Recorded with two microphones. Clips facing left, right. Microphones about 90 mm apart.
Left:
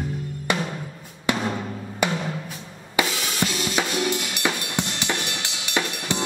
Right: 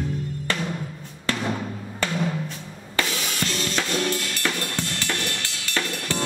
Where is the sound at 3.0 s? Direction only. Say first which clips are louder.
Left 3 dB; 10° left (ahead or behind).